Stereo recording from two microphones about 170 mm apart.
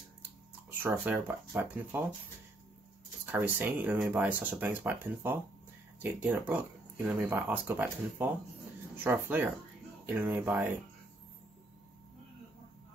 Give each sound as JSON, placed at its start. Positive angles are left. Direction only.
{"t": 0.7, "sound": "speech", "side_deg": -10}
{"t": 3.3, "sound": "speech", "side_deg": -10}